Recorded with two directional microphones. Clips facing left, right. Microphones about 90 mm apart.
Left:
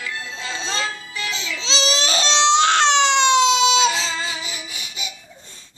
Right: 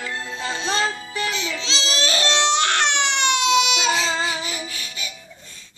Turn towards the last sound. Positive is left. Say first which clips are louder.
# right 2 dB
turn(degrees=20)  # may be behind; listen again after turning